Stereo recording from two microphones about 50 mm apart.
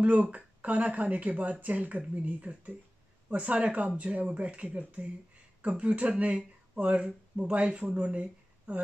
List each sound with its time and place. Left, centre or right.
0.0 s speech: right